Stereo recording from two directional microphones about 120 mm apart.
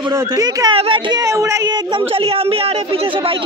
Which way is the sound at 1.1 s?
30° right (ahead or behind).